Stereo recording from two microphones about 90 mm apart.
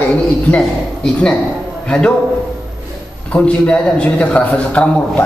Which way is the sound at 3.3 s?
10° left (ahead or behind).